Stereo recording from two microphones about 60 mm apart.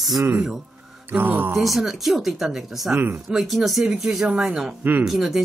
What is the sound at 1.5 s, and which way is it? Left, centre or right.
Speech, centre.